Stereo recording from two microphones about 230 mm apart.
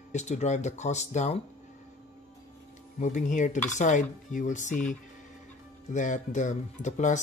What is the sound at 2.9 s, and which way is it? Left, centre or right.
Speech, left.